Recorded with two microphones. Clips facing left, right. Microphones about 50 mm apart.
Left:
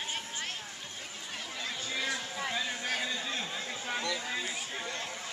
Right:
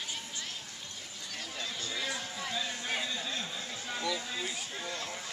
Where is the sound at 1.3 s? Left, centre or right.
Left.